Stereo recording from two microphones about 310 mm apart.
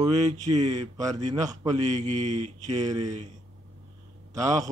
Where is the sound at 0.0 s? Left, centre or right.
Right.